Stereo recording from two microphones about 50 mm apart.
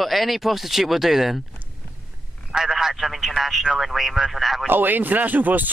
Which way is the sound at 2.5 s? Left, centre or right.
Centre.